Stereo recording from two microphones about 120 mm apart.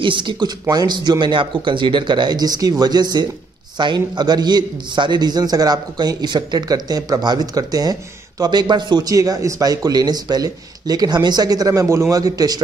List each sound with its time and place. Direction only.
0.0 s a man's voice: 40° right (ahead or behind)